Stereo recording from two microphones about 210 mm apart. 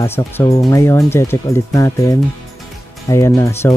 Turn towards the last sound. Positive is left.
turn(degrees=15)  # may be behind; listen again after turning